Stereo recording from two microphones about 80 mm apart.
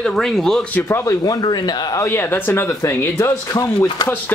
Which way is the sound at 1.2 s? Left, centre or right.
Left.